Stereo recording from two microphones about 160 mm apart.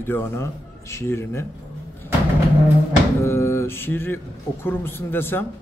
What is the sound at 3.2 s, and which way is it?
A man's voice, 15° left (ahead or behind).